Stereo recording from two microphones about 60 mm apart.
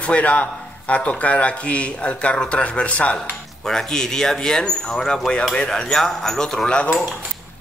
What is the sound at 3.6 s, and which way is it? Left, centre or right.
Speech, centre.